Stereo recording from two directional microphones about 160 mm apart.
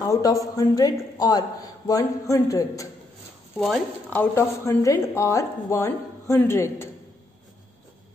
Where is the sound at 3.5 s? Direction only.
Centre (ahead or behind).